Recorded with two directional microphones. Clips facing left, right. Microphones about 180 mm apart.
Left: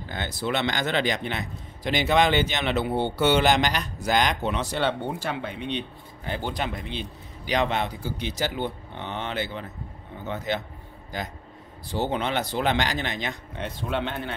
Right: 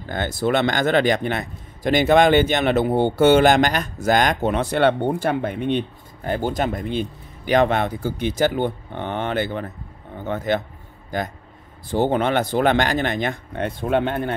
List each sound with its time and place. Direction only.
0.1 s a man's voice: 50° right (ahead or behind)